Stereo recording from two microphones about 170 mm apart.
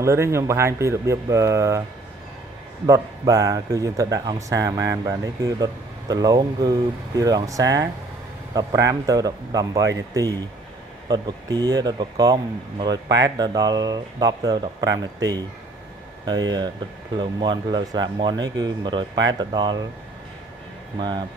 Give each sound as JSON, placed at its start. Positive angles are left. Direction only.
{"t": 0.0, "sound": "speech", "side_deg": -15}
{"t": 2.9, "sound": "speech", "side_deg": -20}
{"t": 17.2, "sound": "speech", "side_deg": -25}